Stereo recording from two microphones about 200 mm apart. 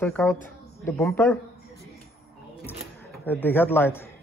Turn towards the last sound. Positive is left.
turn(degrees=10)  # may be behind; listen again after turning